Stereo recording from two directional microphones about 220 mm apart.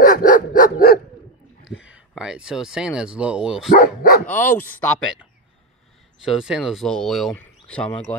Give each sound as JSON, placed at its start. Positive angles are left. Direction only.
{"t": 0.0, "sound": "dog", "side_deg": 40}
{"t": 1.9, "sound": "speech", "side_deg": -5}
{"t": 3.7, "sound": "speech", "side_deg": 40}
{"t": 4.3, "sound": "speech", "side_deg": 10}
{"t": 6.2, "sound": "speech", "side_deg": -5}